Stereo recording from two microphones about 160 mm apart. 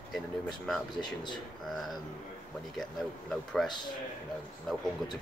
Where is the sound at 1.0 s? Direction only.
30° left (ahead or behind).